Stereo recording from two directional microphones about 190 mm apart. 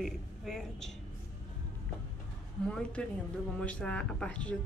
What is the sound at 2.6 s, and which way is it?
A woman's voice, 5° left (ahead or behind).